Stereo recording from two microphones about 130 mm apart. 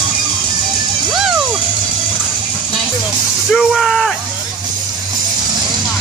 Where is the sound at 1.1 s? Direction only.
5° right (ahead or behind).